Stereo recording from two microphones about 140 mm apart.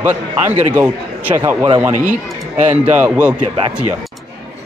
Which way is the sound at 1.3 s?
35° right (ahead or behind).